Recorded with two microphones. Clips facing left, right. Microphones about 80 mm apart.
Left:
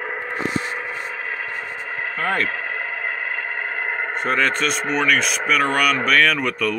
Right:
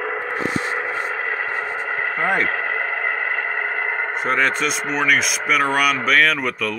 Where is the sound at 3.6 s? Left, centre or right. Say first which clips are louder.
Right 2 dB; centre.